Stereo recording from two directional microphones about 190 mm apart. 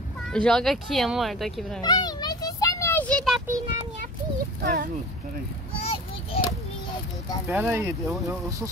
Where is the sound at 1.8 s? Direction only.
20° left (ahead or behind).